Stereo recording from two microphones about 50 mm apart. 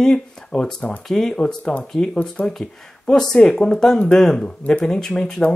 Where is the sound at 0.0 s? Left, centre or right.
Centre; by 2.5 s left.